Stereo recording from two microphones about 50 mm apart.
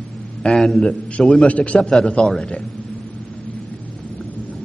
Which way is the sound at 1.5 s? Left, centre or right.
Left.